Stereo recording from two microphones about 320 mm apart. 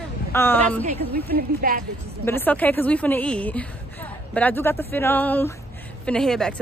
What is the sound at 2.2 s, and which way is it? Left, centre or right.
A woman's voice, centre.